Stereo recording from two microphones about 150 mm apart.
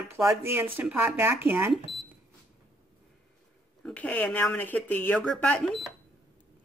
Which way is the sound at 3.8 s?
10° left (ahead or behind).